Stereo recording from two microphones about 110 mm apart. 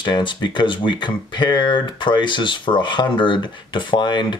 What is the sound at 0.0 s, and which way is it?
Speech, 45° left (ahead or behind).